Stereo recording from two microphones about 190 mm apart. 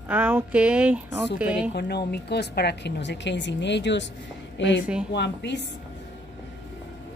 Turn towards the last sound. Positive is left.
turn(degrees=65)  # may be behind; listen again after turning